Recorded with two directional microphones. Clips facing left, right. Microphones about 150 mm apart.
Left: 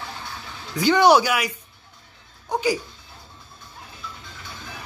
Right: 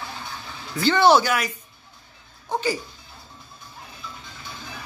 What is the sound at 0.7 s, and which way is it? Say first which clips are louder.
Speech: left 1 dB; 15° left (ahead or behind).